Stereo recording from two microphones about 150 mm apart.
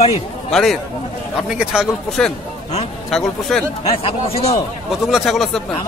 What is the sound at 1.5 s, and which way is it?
Speech, 5° right (ahead or behind).